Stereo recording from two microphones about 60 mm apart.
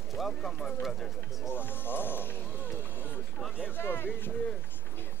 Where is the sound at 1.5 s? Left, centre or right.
Left.